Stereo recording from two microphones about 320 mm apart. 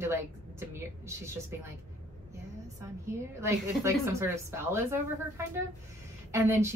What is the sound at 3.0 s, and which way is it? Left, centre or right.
Speech, centre.